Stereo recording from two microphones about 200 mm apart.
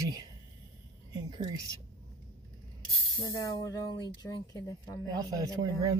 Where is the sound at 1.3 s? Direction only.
20° right (ahead or behind).